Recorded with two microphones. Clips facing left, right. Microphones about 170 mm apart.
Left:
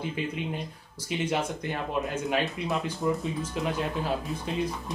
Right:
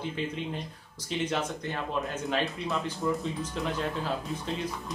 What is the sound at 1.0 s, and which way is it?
Speech, 10° left (ahead or behind).